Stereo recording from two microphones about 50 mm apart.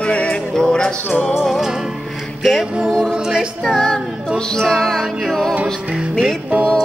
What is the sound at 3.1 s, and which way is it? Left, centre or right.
Music, centre.